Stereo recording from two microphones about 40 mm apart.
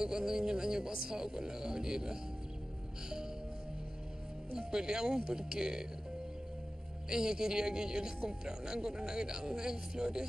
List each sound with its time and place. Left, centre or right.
0.0 s a man's voice: centre
4.6 s speech: centre
7.1 s a man's voice: centre